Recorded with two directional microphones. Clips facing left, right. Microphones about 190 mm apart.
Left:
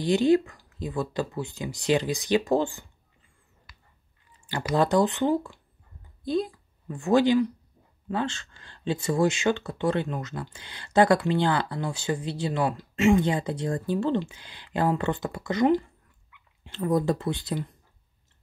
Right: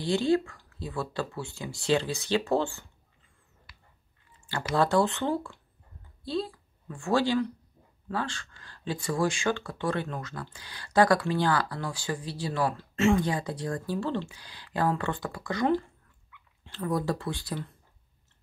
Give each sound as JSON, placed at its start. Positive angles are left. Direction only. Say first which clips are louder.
{"t": 0.0, "sound": "speech", "louder": "left 4 dB", "side_deg": 20}
{"t": 4.7, "sound": "speech", "louder": "left 2 dB", "side_deg": 20}